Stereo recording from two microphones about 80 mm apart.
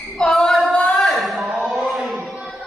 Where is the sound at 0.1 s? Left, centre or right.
Centre.